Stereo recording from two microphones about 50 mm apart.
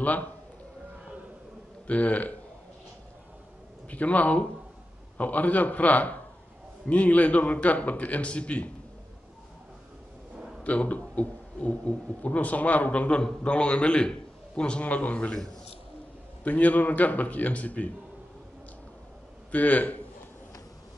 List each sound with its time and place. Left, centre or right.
0.0 s a man's voice: left
1.9 s a man's voice: left
3.9 s a man's voice: left
10.3 s a sound: centre
10.6 s a man's voice: left
16.4 s speech: left
19.5 s speech: left